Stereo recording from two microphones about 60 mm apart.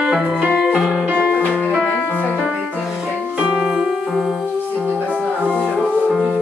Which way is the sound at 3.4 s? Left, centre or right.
Centre.